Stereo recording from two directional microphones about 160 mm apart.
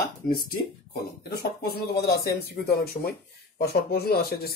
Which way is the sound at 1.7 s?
85° left.